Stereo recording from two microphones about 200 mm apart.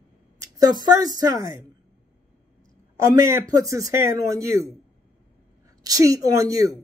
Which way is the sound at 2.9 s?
15° right (ahead or behind).